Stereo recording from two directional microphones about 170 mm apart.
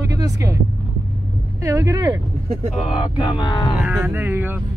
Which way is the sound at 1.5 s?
20° right (ahead or behind).